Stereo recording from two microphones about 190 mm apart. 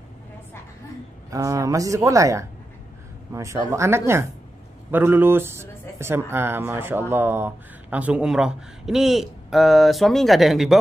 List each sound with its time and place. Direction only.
1.3 s a man's voice: 15° right (ahead or behind); by 10.8 s centre (ahead or behind)